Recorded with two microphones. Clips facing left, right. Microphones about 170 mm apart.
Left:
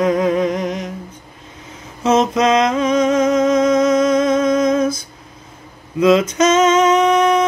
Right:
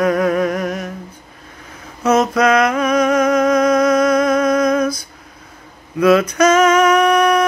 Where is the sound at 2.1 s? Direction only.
25° left (ahead or behind).